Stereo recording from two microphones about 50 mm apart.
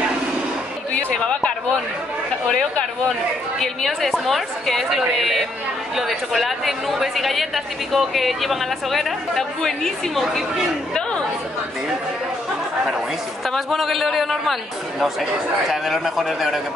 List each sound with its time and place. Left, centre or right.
1.2 s a sound: left
3.5 s a woman's voice: centre
11.0 s chatter: centre
13.5 s a woman's voice: centre